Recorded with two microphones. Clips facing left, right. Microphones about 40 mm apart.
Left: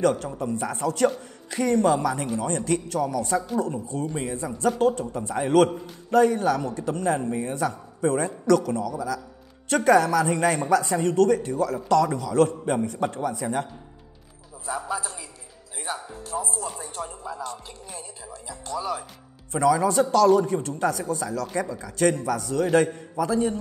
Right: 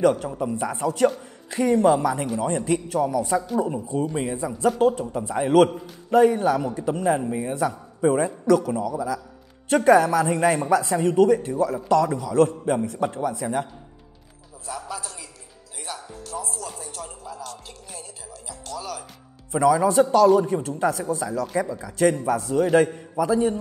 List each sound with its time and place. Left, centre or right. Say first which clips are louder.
0.0 s a man's voice: right 3 dB; centre
6.0 s a man's voice: right 2 dB; centre
14.7 s a man's voice: left 4 dB; centre
15.8 s music: left 3 dB; centre
19.5 s a man's voice: right 2 dB; centre
22.2 s a man's voice: right 3 dB; centre